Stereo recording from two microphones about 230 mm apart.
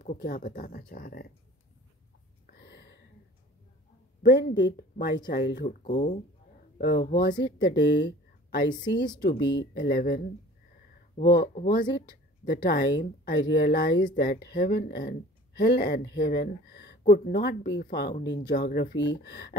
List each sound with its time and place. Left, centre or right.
0.0 s speech: left
2.4 s a sound: left
4.3 s speech: left
7.4 s speech: left
9.3 s speech: left